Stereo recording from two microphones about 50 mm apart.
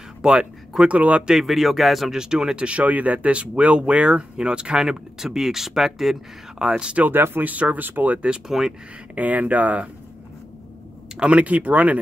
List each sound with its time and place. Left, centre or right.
0.2 s a sound: centre
0.9 s speech: right
1.2 s speech: centre
2.1 s speech: centre
7.0 s speech: right
7.5 s speech: right
8.5 s speech: centre
9.1 s speech: right
11.1 s speech: right